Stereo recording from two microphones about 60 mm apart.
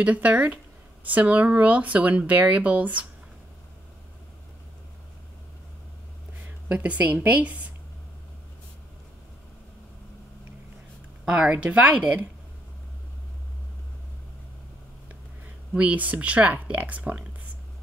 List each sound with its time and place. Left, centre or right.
0.0 s speech: right
6.4 s speech: right
11.4 s speech: right
15.7 s speech: right